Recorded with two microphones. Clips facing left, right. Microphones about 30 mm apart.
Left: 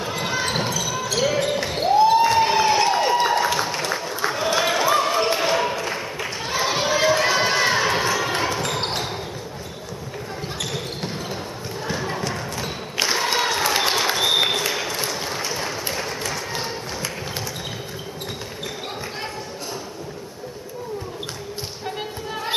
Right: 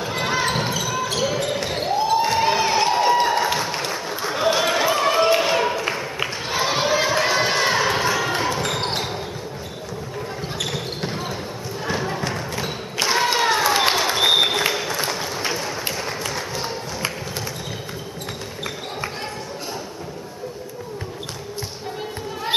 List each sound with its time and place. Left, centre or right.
0.0 s basketball bounce: centre
0.5 s basketball bounce: centre
1.9 s basketball bounce: centre
2.3 s a sound: centre
10.6 s basketball bounce: centre
11.8 s clip-clop: centre
12.4 s a sound: centre
13.6 s applause: centre